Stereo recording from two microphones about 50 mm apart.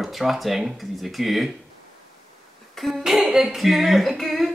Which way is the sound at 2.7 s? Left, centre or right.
Centre.